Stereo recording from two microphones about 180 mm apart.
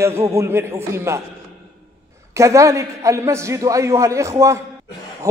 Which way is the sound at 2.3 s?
15° right (ahead or behind).